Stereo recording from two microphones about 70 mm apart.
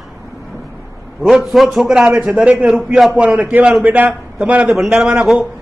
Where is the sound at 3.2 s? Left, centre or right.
Centre.